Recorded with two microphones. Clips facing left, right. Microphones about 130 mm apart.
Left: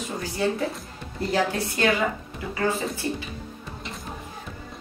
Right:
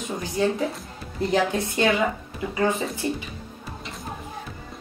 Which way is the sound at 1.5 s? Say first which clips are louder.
Right 2 dB; 20° right (ahead or behind).